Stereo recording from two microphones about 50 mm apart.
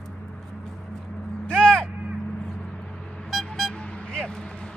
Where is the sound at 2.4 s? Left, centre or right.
Centre.